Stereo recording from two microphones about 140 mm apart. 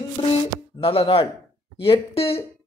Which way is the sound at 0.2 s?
35° left (ahead or behind).